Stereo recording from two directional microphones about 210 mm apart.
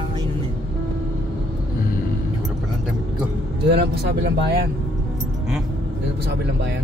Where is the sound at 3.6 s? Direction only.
50° right (ahead or behind).